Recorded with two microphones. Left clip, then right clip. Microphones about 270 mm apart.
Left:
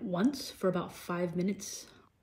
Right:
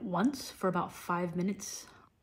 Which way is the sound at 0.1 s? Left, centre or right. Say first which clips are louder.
Even; centre.